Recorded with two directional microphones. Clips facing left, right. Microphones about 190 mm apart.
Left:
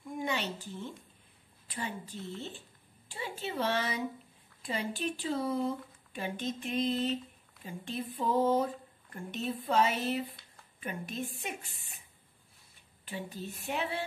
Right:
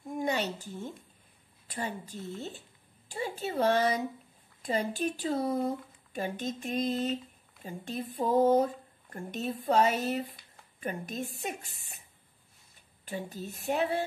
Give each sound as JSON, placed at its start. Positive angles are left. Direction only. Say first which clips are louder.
{"t": 0.0, "sound": "a sound", "louder": "right 4 dB", "side_deg": -45}
{"t": 1.7, "sound": "speech", "louder": "right 3 dB", "side_deg": -45}
{"t": 13.0, "sound": "speech", "louder": "right 2 dB", "side_deg": -40}